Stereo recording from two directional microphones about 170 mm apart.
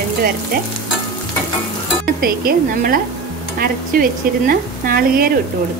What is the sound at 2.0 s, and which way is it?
Speech, 60° right (ahead or behind).